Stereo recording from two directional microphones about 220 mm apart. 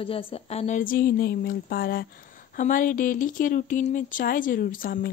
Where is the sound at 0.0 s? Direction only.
25° left (ahead or behind).